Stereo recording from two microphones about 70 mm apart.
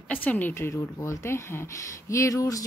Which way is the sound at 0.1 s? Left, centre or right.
Left.